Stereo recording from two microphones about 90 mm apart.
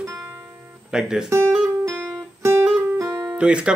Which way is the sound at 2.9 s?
35° right (ahead or behind).